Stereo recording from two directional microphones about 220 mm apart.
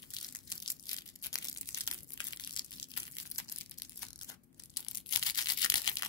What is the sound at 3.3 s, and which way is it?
Tearing, 15° left (ahead or behind).